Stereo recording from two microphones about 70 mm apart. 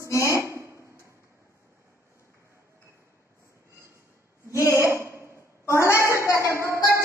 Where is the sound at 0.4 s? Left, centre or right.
Right.